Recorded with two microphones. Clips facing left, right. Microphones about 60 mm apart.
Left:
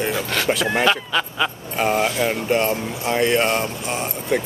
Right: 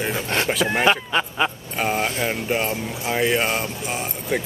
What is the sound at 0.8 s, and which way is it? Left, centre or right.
Speech, right.